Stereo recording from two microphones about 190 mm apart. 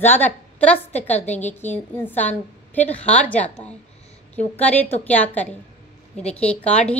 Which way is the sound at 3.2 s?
5° left (ahead or behind).